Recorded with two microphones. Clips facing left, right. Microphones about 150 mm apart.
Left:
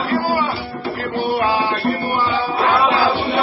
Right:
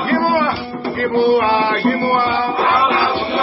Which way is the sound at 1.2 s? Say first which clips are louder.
Right 4 dB; 75° right (ahead or behind).